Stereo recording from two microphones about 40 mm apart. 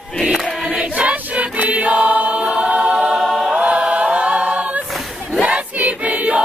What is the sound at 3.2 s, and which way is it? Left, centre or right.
Choir, centre.